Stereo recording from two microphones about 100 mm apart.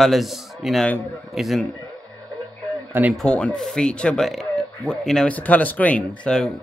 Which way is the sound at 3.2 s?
10° left (ahead or behind).